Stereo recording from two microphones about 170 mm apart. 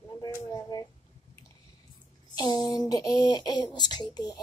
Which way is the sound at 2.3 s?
25° left (ahead or behind).